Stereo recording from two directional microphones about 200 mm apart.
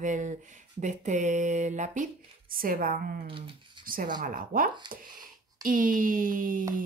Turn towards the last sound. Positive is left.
turn(degrees=-40)  # may be behind; listen again after turning